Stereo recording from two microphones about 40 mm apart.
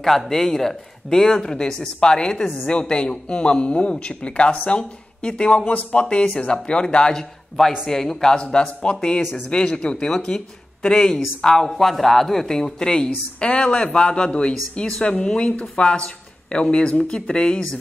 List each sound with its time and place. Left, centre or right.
0.0 s speech: centre
2.4 s speech: centre
2.8 s a man's voice: left
11.6 s a man's voice: centre; by 17.6 s left